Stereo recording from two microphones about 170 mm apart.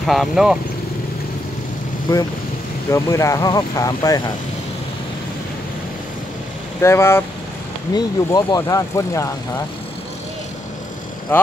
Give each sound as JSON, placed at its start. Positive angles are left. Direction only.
{"t": 0.0, "sound": "speech", "side_deg": 0}
{"t": 2.1, "sound": "speech", "side_deg": 20}
{"t": 6.8, "sound": "speech", "side_deg": 15}